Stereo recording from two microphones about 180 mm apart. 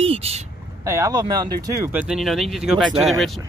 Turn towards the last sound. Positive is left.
turn(degrees=0)  # may be behind; listen again after turning